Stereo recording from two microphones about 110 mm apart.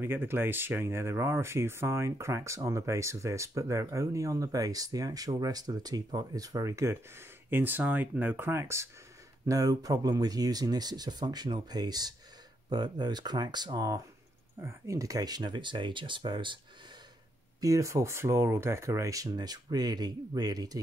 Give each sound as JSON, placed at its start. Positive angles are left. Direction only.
{"t": 0.0, "sound": "speech", "side_deg": -20}
{"t": 17.6, "sound": "speech", "side_deg": -30}